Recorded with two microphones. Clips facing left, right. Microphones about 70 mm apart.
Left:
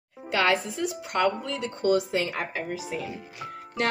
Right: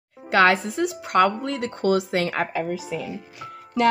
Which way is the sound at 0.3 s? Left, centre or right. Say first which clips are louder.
Right 6 dB; right.